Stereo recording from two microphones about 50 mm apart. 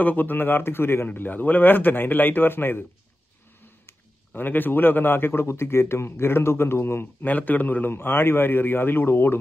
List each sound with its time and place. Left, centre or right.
0.0 s a man's voice: left
4.4 s a man's voice: left
7.2 s a man's voice: left